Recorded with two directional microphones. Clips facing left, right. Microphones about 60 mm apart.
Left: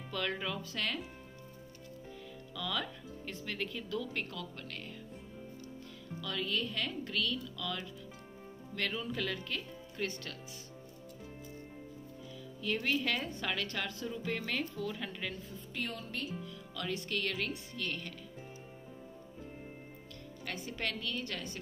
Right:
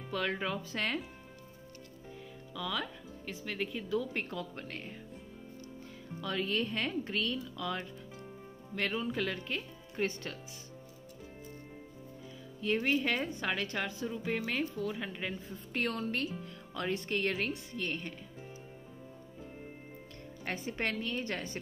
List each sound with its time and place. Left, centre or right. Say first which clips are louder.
0.1 s speech: right 3 dB; centre
2.5 s speech: right 1 dB; centre; by 4.9 s right
6.2 s speech: right 3 dB; right
8.7 s a woman's voice: right 3 dB; right
9.4 s speech: right 2 dB; right
12.6 s a woman's voice: right 3 dB; right
15.7 s a woman's voice: right 6 dB; right
16.7 s speech: right 3 dB; right
20.4 s speech: right 3 dB; right